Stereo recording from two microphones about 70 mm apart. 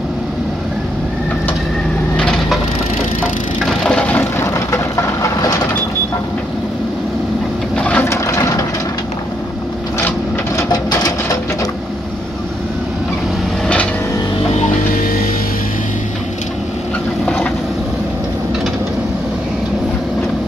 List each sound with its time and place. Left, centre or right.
2.1 s wood: centre
3.6 s a sound: centre
4.5 s vehicle: left
7.7 s sewing machine: centre
8.1 s a sound: left
10.7 s sewing machine: left